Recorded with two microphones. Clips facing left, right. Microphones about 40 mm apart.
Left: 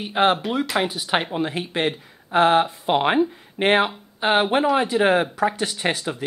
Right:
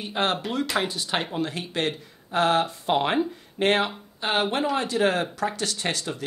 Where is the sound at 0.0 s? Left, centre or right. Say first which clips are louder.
Left 6 dB; centre.